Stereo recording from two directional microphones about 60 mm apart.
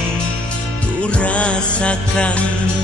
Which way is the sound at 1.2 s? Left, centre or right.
Left.